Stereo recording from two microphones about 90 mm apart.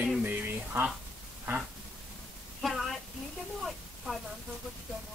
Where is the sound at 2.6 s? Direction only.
Centre (ahead or behind).